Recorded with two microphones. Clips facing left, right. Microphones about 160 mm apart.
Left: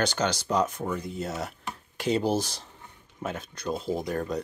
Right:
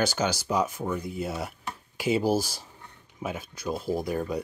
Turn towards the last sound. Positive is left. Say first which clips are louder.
# right 1 dB
turn(degrees=-5)  # may be behind; listen again after turning